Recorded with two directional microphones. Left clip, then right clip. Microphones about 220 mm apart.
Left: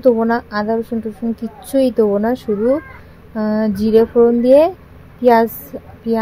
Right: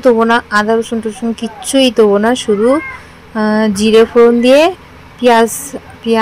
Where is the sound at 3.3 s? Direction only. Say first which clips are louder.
Right 6 dB; 40° right (ahead or behind).